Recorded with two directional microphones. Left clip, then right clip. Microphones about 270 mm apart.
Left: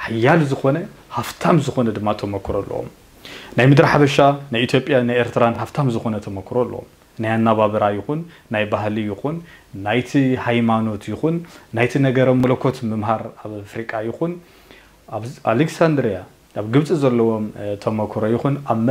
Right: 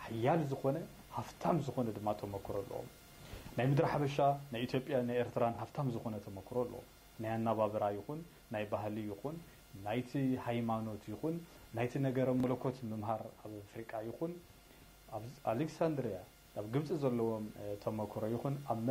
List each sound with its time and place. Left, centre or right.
0.0 s speech: left